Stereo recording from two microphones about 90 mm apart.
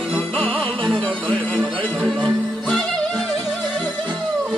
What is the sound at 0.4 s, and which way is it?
Music, 15° left (ahead or behind).